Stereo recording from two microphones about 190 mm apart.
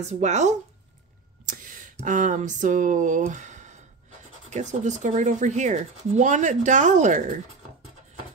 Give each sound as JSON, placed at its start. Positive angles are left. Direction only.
{"t": 0.0, "sound": "speech", "side_deg": -35}
{"t": 1.4, "sound": "a sound", "side_deg": -45}
{"t": 4.5, "sound": "speech", "side_deg": -40}